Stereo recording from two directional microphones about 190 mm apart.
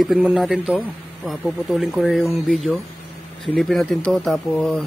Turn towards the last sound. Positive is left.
turn(degrees=0)  # may be behind; listen again after turning